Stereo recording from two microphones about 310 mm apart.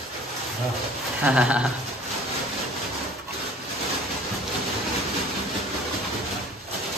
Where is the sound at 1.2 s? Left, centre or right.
Centre.